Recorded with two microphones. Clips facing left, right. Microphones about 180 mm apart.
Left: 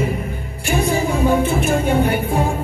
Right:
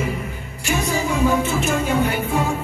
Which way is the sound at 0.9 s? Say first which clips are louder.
Left 2 dB; 30° left (ahead or behind).